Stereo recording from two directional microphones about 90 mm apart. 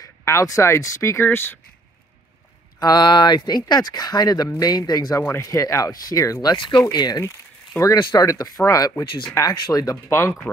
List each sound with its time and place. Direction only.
0.0 s speech: 35° left (ahead or behind)
1.2 s speech: 25° left (ahead or behind)
2.8 s speech: 50° left (ahead or behind)
6.5 s speech: 60° left (ahead or behind)
6.9 s speech: 50° left (ahead or behind)
8.0 s speech: 55° left (ahead or behind)
8.3 s speech: 45° left (ahead or behind)
9.0 s speech: 65° left (ahead or behind)
9.3 s speech: 35° left (ahead or behind)
10.0 s speech: 25° left (ahead or behind)